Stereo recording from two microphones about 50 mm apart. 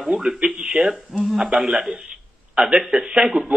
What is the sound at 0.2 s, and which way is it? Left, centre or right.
Speech, centre.